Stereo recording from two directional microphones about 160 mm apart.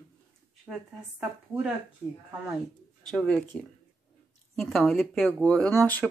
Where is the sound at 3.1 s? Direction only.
Centre (ahead or behind).